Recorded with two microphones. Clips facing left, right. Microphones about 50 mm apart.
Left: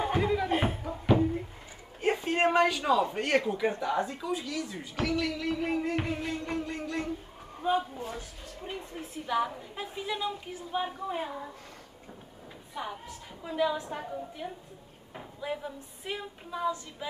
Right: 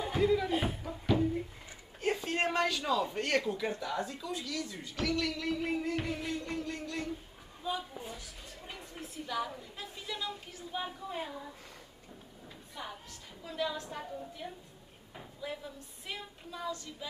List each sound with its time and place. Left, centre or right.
0.0 s a sound: left
0.9 s music: left
2.0 s speech: left
5.9 s music: left
7.6 s speech: left
8.5 s a woman's voice: left
12.7 s a woman's voice: left